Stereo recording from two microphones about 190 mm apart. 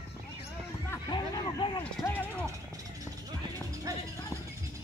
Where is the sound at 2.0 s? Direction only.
10° left (ahead or behind).